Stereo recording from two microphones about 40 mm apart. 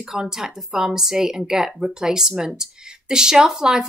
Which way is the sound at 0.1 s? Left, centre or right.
Centre.